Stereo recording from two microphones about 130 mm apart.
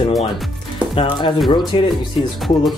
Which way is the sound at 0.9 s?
40° left (ahead or behind).